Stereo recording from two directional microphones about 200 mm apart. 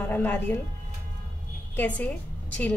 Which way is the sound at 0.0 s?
10° left (ahead or behind).